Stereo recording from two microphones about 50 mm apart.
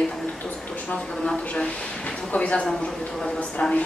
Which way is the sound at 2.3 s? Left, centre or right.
Left.